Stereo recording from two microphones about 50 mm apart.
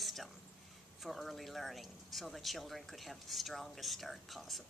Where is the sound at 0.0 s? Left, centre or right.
Centre.